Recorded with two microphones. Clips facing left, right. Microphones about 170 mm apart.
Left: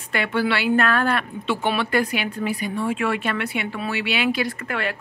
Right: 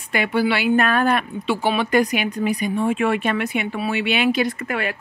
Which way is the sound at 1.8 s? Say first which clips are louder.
Right 4 dB; 15° right (ahead or behind).